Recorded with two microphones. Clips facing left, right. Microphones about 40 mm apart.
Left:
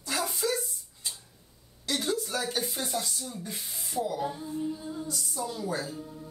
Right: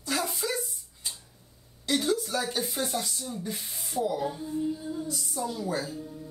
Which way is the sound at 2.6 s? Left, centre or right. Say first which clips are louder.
Right 2 dB; centre.